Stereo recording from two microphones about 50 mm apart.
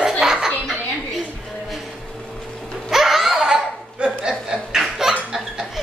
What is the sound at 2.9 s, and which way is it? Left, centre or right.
Laughter, centre.